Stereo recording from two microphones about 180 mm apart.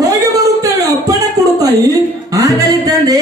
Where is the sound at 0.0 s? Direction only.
20° right (ahead or behind).